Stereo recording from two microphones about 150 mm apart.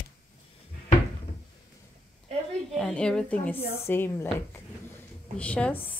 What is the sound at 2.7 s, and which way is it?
Speech, 5° left (ahead or behind).